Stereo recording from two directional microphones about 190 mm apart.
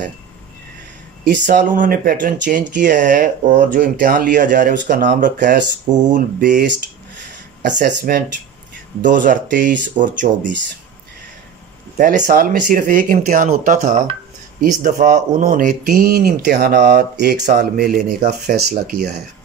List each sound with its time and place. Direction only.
1.3 s speech: 45° right (ahead or behind)
9.2 s speech: 45° right (ahead or behind)
12.0 s speech: 45° right (ahead or behind); by 17.5 s 60° right (ahead or behind)
17.5 s speech: 45° right (ahead or behind)